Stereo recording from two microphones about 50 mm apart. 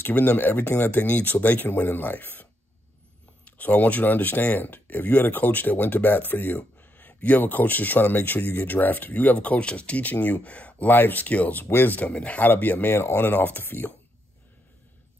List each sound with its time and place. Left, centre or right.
0.1 s speech: left
3.4 s speech: left
10.9 s speech: left
11.6 s speech: left
12.0 s speech: left
12.9 s speech: left